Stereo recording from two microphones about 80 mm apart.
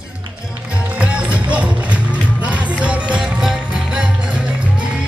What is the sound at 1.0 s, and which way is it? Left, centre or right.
Music, centre.